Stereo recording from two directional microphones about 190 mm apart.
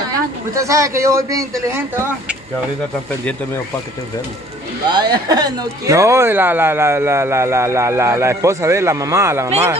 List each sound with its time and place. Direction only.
0.6 s speech: 15° right (ahead or behind)
4.8 s speech: 20° right (ahead or behind)